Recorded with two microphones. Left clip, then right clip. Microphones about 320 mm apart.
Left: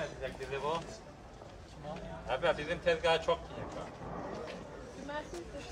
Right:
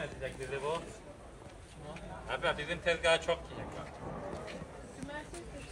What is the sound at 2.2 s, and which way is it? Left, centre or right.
Speech, left.